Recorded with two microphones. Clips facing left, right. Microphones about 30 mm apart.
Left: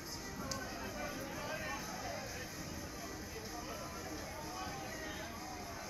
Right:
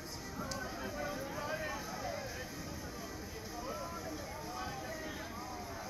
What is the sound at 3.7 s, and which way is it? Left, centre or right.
Vehicle, centre.